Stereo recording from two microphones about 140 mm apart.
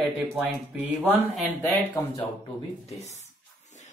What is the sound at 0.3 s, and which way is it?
Speech, 10° right (ahead or behind).